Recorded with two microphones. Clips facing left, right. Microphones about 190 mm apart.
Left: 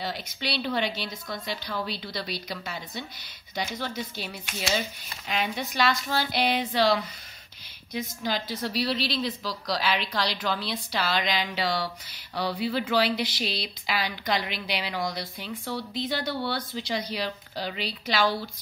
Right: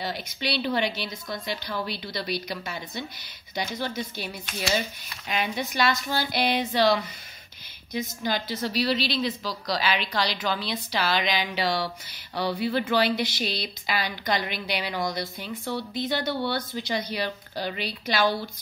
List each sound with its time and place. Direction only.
0.0 s a woman's voice: centre (ahead or behind)
4.5 s a woman's voice: 5° left (ahead or behind)
13.1 s speech: 50° right (ahead or behind)
13.8 s a woman's voice: centre (ahead or behind)